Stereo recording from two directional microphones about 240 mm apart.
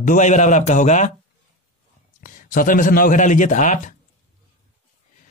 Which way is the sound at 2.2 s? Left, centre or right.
Left.